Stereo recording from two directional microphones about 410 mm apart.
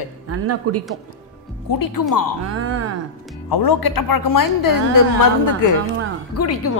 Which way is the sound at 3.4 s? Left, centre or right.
Left.